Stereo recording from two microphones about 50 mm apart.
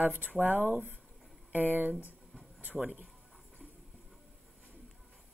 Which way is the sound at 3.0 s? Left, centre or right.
Centre.